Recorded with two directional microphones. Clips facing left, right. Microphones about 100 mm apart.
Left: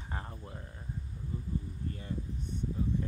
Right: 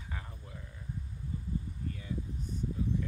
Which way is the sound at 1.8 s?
40° left (ahead or behind).